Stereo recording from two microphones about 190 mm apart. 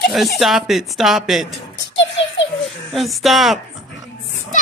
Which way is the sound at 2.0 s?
75° left (ahead or behind).